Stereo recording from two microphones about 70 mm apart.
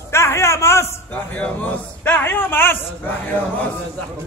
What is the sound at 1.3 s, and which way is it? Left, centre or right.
Speech, left.